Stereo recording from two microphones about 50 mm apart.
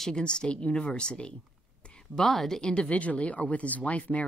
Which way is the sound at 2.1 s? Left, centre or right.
Centre.